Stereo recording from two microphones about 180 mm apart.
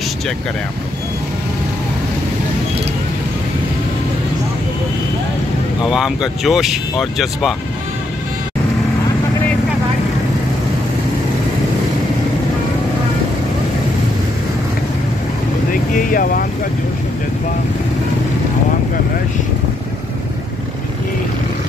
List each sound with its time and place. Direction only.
5.9 s speech: 5° right (ahead or behind)
15.7 s speech: 50° left (ahead or behind)